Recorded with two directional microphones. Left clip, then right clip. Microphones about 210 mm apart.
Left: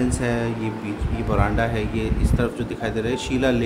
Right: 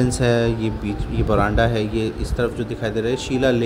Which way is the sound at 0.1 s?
20° right (ahead or behind).